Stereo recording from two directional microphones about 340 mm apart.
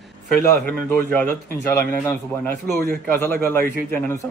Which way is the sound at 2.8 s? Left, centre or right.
Right.